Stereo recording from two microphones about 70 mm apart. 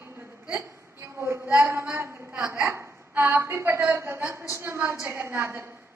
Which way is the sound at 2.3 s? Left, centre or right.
Centre.